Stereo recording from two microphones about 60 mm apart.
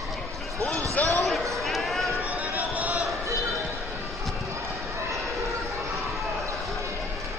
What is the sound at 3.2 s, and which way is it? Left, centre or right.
Basketball bounce, right.